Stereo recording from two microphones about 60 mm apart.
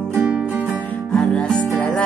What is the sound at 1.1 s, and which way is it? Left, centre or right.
Music, centre.